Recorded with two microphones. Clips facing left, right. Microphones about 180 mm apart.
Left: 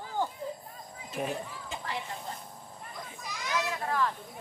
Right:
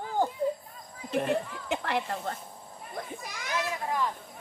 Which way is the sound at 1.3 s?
70° right (ahead or behind).